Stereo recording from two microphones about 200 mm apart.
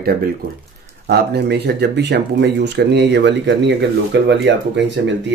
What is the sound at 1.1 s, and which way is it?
Speech, 55° right (ahead or behind).